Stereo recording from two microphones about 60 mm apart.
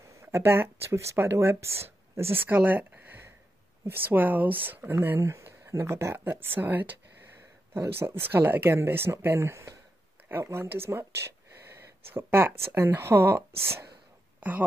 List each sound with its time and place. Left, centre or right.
0.2 s speech: right
5.2 s speech: right
6.1 s speech: right
8.0 s speech: right
12.1 s speech: right